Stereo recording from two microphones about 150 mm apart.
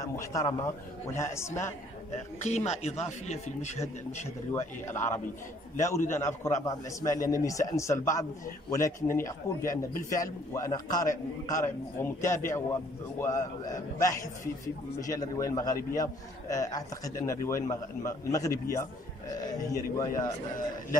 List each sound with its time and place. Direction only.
0.0 s a man's voice: 20° left (ahead or behind)
2.4 s speech: 45° left (ahead or behind)
4.5 s a man's voice: 15° left (ahead or behind)